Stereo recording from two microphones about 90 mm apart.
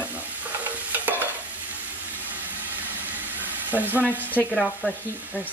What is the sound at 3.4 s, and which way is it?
Frying, 20° right (ahead or behind).